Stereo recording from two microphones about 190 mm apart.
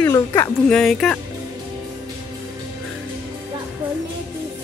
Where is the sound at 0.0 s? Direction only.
15° left (ahead or behind).